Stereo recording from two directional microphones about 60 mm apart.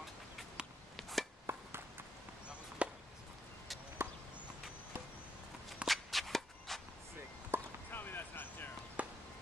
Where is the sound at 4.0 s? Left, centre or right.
Right.